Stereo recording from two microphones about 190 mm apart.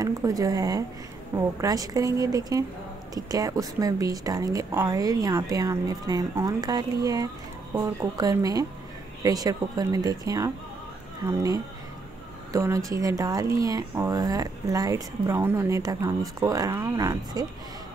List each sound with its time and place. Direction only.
0.0 s a woman's voice: 20° right (ahead or behind)